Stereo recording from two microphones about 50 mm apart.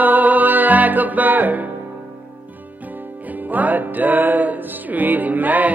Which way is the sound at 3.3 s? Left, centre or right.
Right.